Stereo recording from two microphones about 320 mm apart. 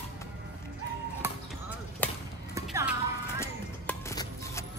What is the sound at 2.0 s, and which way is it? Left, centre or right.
Chop, centre.